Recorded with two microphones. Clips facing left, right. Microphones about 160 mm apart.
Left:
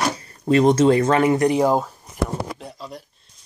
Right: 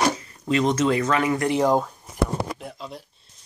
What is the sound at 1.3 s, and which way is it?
Speech, 15° left (ahead or behind).